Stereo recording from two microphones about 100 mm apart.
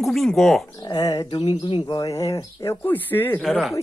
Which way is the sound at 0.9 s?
40° left (ahead or behind).